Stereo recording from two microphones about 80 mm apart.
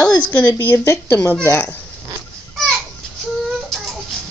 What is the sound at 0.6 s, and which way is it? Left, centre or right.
Speech, left.